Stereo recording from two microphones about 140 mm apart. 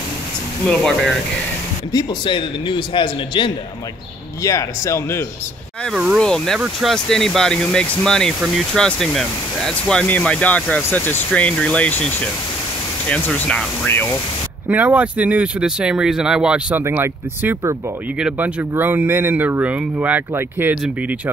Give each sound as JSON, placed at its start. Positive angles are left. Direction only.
{"t": 0.7, "sound": "speech", "side_deg": 5}
{"t": 1.9, "sound": "a man's voice", "side_deg": 30}
{"t": 4.4, "sound": "speech", "side_deg": 20}
{"t": 6.1, "sound": "speech", "side_deg": 5}
{"t": 13.1, "sound": "speech", "side_deg": 5}
{"t": 14.7, "sound": "speech", "side_deg": -10}